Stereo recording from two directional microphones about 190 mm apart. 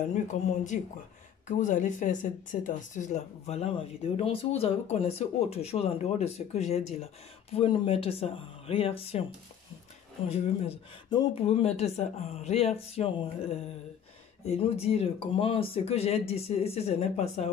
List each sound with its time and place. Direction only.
0.1 s speech: 40° left (ahead or behind)